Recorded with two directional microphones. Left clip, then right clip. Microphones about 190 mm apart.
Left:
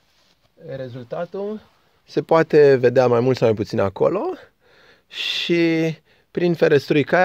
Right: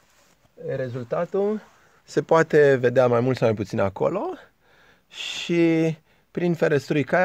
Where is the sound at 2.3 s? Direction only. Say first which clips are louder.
Left 4 dB; 30° left (ahead or behind).